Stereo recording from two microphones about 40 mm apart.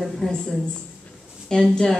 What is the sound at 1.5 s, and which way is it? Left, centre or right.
Speech, centre.